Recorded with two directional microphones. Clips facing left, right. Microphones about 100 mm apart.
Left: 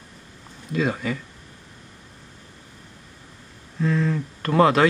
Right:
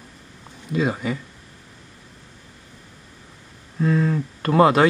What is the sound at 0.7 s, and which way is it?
Speech, 10° right (ahead or behind).